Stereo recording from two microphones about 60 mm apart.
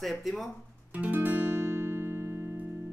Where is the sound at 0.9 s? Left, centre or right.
Right.